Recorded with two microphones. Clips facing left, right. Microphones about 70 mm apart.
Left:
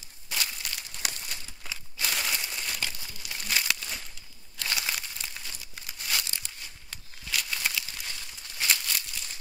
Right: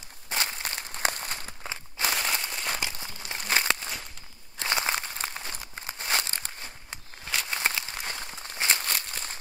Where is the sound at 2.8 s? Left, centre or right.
Right.